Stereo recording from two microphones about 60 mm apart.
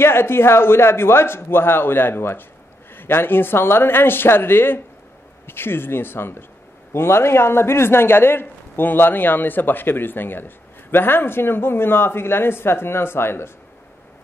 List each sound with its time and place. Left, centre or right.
0.0 s a man's voice: left